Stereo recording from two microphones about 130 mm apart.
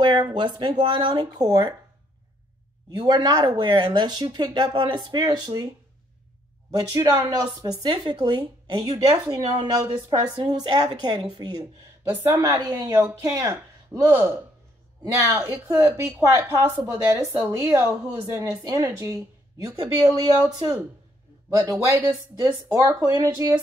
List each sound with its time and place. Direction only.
0.0 s speech: 35° right (ahead or behind)
3.0 s speech: 30° right (ahead or behind)
6.7 s speech: 25° right (ahead or behind)
12.6 s speech: 15° right (ahead or behind)
21.5 s speech: 25° right (ahead or behind)